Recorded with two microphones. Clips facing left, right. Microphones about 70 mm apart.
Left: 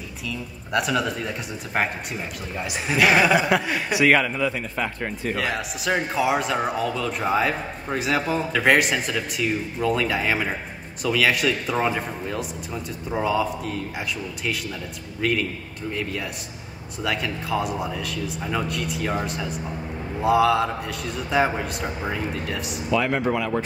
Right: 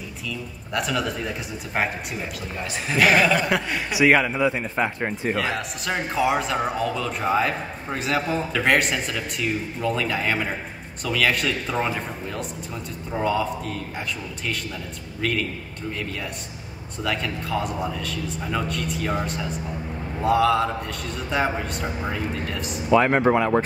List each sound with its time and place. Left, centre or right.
0.7 s speech: centre; by 5.3 s right
5.3 s speech: centre
17.0 s speech: centre
22.8 s speech: right